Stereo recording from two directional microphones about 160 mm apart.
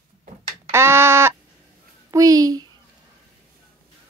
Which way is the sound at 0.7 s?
15° right (ahead or behind).